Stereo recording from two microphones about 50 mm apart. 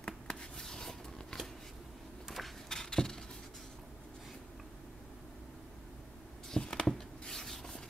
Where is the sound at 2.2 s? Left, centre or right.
Centre.